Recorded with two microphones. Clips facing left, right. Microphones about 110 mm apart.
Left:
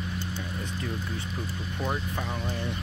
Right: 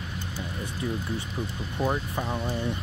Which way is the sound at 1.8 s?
15° right (ahead or behind).